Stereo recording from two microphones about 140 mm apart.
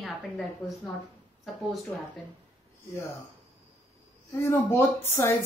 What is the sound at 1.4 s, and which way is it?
Speech, centre (ahead or behind).